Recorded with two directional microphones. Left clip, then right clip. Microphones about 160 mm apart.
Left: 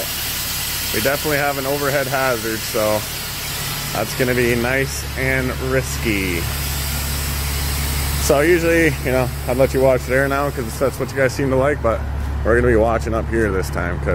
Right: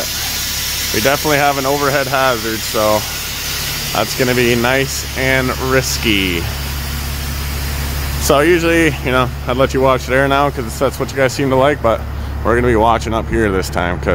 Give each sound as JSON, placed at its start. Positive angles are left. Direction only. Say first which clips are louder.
{"t": 1.0, "sound": "speech", "louder": "right 6 dB", "side_deg": -45}
{"t": 4.0, "sound": "speech", "louder": "right 4 dB", "side_deg": -40}
{"t": 8.3, "sound": "speech", "louder": "right 3 dB", "side_deg": -30}